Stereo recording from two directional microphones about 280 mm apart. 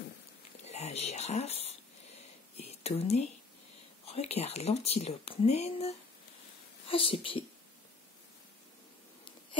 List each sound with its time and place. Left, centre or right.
0.7 s speech: left
2.5 s a sound: left
4.0 s speech: left